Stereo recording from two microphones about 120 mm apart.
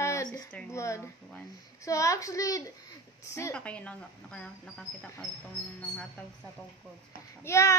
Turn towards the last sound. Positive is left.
turn(degrees=20)  # may be behind; listen again after turning